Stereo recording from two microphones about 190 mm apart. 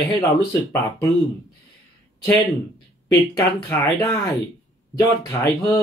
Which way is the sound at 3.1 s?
15° left (ahead or behind).